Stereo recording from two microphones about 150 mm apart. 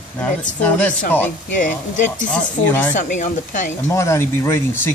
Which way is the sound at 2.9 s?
55° left (ahead or behind).